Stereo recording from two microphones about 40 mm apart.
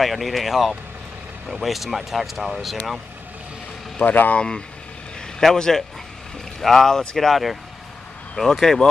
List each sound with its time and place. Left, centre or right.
0.0 s speech: centre
4.0 s speech: left
4.4 s speech: centre